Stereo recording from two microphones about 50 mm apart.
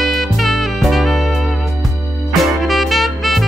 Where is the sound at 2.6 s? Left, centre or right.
Centre.